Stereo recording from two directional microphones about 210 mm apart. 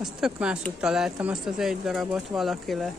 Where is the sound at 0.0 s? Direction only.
5° right (ahead or behind).